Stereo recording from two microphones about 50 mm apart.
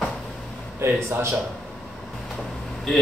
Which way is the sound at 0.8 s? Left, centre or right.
Right.